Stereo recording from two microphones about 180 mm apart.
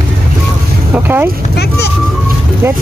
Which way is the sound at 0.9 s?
10° right (ahead or behind).